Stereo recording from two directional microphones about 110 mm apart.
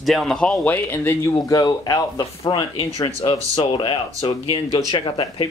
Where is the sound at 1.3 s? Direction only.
35° left (ahead or behind).